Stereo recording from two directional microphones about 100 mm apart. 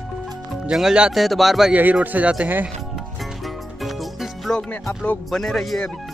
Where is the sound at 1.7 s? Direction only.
15° right (ahead or behind).